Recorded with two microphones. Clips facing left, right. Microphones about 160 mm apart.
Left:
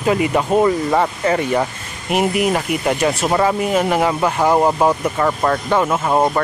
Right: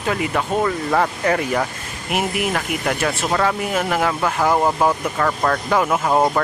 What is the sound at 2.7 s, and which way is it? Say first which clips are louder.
Speech: left 4 dB; 5° left (ahead or behind).